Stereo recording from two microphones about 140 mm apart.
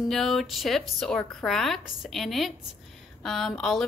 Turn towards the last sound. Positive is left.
turn(degrees=5)  # may be behind; listen again after turning